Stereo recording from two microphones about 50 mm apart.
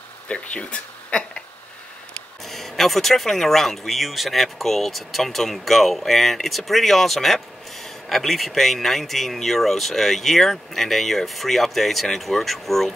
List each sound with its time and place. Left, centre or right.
0.3 s speech: left
2.4 s speech: centre